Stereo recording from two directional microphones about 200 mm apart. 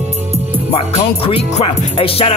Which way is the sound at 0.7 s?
25° left (ahead or behind).